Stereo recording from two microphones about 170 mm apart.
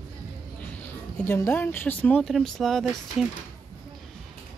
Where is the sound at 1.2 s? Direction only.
15° left (ahead or behind).